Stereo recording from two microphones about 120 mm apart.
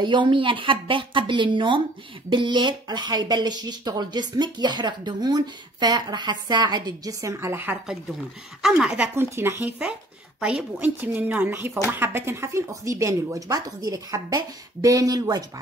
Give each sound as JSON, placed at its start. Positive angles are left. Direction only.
{"t": 0.0, "sound": "a woman's voice", "side_deg": -40}
{"t": 8.6, "sound": "speech", "side_deg": -5}
{"t": 9.1, "sound": "speech", "side_deg": -20}